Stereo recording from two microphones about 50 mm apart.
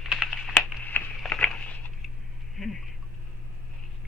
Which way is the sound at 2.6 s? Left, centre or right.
Centre.